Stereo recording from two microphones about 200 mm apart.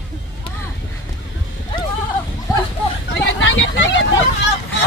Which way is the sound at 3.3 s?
70° left (ahead or behind).